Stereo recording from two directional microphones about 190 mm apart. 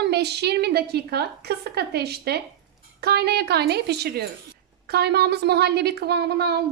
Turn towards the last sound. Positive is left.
turn(degrees=-55)  # may be behind; listen again after turning